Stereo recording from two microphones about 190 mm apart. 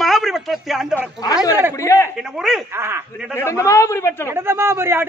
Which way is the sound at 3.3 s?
15° left (ahead or behind).